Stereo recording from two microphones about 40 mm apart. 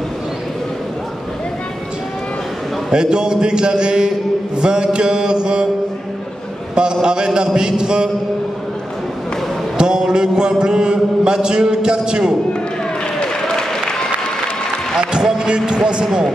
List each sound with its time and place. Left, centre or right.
2.9 s a man's voice: centre
6.7 s a man's voice: centre
9.8 s a sound: centre
10.6 s a man's voice: centre
13.2 s applause: centre
15.0 s speech: centre